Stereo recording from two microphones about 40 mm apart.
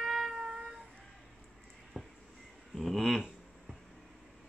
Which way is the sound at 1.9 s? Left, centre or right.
Centre.